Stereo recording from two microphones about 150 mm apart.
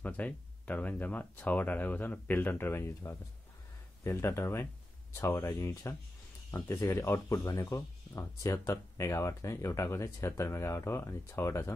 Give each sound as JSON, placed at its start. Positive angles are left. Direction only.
{"t": 0.0, "sound": "speech", "side_deg": 10}